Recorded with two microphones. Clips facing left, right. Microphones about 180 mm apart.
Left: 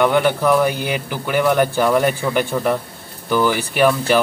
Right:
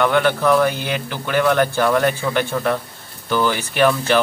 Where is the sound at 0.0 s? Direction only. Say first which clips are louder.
Left 1 dB; 15° left (ahead or behind).